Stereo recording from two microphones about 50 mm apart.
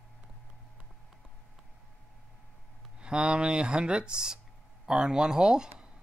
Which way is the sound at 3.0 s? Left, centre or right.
Centre.